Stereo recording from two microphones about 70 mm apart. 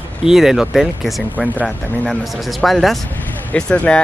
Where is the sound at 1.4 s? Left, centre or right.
Left.